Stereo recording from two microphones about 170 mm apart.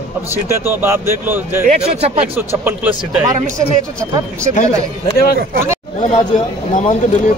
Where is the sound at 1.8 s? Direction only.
40° right (ahead or behind).